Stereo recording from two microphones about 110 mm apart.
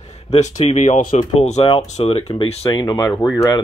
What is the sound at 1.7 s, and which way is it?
Speech, 75° left (ahead or behind).